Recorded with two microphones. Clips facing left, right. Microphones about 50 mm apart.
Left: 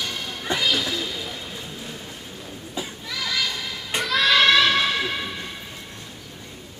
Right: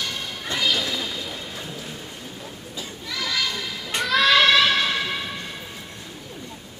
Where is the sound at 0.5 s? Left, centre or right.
Left.